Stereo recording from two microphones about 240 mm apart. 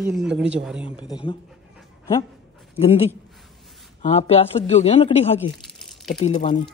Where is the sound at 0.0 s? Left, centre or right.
Centre.